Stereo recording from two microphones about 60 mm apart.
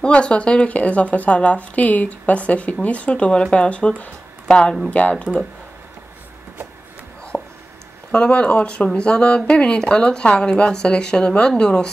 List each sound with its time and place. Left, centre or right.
0.0 s speech: centre
7.3 s a sound: centre
8.1 s speech: centre